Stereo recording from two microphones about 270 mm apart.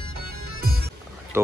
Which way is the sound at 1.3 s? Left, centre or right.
Centre.